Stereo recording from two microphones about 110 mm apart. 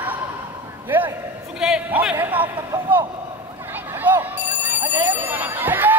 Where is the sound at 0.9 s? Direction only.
15° right (ahead or behind).